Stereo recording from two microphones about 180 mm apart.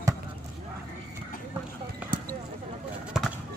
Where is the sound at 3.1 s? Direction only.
5° right (ahead or behind).